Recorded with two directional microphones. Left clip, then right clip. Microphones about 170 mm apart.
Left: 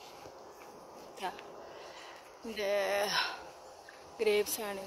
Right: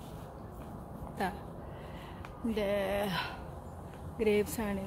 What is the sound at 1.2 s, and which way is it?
Speech, centre (ahead or behind).